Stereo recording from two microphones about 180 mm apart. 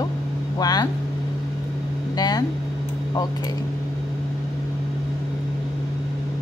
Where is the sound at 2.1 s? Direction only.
20° left (ahead or behind).